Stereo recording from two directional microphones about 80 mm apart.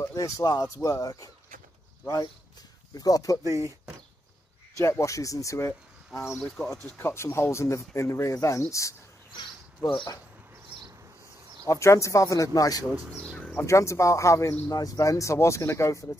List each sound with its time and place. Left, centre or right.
0.1 s speech: left
2.9 s speech: left
3.4 s speech: right
4.7 s speech: left
6.4 s speech: centre
7.0 s speech: left
11.6 s speech: left
13.6 s speech: left